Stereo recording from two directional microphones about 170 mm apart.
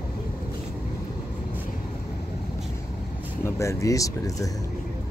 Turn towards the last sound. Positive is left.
turn(degrees=20)  # may be behind; listen again after turning